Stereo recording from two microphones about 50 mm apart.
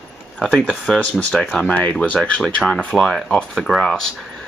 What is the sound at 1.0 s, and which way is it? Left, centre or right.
Speech, left.